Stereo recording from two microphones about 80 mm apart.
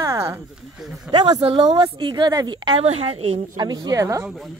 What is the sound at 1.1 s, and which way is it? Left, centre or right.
A woman's voice, right.